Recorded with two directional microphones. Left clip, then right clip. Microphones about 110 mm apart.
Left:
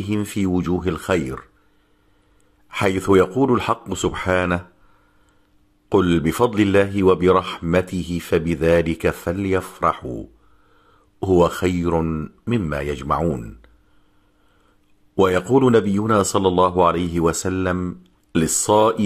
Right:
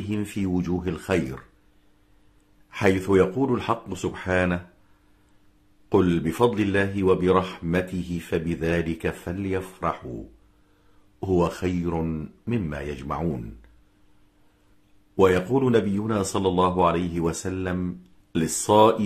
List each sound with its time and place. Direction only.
0.0 s speech: 30° left (ahead or behind)
2.7 s speech: 30° left (ahead or behind)
5.9 s speech: 35° left (ahead or behind)
11.1 s speech: 35° left (ahead or behind)
12.0 s speech: 20° left (ahead or behind)
12.4 s speech: 35° left (ahead or behind)
13.2 s speech: 25° left (ahead or behind)
15.1 s speech: 35° left (ahead or behind)